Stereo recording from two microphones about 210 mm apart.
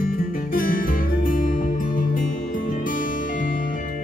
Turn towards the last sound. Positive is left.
turn(degrees=40)  # may be behind; listen again after turning